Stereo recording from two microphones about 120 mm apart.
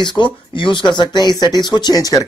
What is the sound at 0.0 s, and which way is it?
Speech, 40° left (ahead or behind).